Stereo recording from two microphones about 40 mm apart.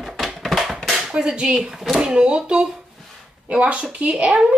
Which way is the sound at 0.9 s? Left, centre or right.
Centre.